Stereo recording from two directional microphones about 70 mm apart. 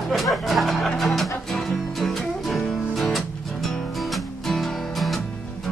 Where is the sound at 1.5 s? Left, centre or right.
Centre.